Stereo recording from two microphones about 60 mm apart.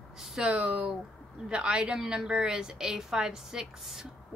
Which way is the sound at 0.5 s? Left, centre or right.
Right.